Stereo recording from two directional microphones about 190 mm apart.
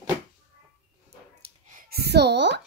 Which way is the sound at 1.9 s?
60° right (ahead or behind).